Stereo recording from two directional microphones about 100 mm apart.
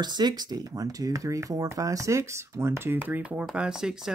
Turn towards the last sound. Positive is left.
turn(degrees=-5)  # may be behind; listen again after turning